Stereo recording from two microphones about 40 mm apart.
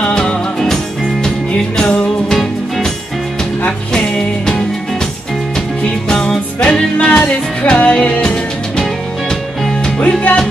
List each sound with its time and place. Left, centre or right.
0.0 s music: left
6.0 s music: centre
8.2 s music: centre
9.9 s music: left